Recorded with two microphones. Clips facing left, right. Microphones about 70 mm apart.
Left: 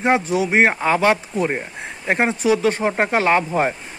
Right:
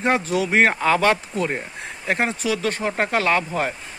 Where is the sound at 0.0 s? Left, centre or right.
Centre.